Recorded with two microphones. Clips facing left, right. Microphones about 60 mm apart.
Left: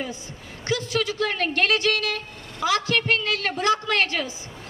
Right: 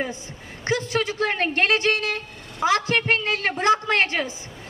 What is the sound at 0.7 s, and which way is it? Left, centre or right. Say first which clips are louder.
Speech: right 1 dB; right.